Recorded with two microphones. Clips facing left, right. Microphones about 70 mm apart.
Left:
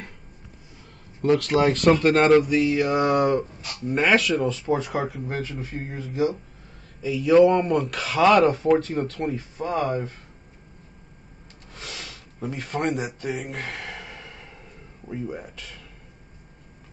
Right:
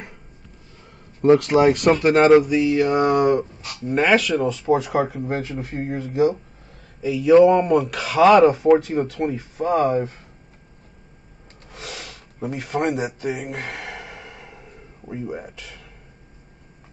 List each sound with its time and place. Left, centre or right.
1.2 s speech: right
1.6 s speech: centre
4.6 s speech: right
5.0 s speech: right
5.4 s speech: centre
5.9 s speech: right
7.0 s speech: centre
9.6 s speech: right
11.7 s a sound: centre
15.0 s speech: centre